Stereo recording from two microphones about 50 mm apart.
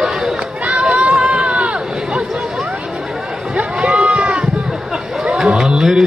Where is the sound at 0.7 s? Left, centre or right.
Right.